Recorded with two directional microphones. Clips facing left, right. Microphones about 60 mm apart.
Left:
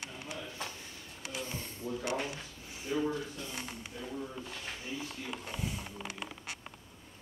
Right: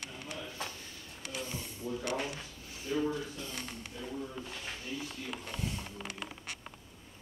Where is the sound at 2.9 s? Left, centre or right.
Left.